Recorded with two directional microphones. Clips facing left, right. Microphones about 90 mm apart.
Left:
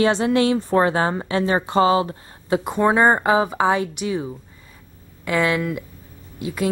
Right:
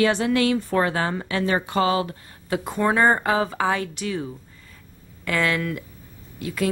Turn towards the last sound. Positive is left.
turn(degrees=20)  # may be behind; listen again after turning